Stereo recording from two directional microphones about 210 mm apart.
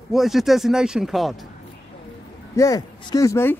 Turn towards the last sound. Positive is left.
turn(degrees=15)  # may be behind; listen again after turning